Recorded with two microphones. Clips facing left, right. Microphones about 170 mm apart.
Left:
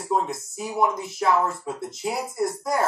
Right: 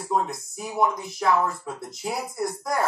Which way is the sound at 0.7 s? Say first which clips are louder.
Left 1 dB; centre (ahead or behind).